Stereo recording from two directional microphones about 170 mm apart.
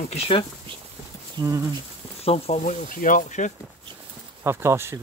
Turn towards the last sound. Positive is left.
turn(degrees=-15)  # may be behind; listen again after turning